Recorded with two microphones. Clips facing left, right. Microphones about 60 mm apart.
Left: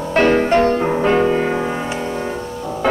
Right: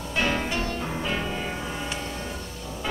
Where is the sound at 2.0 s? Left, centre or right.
Left.